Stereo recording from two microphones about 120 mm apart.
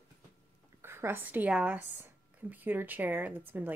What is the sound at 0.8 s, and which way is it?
Speech, 20° right (ahead or behind).